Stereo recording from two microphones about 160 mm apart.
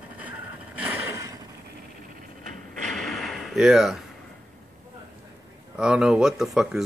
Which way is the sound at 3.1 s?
Centre (ahead or behind).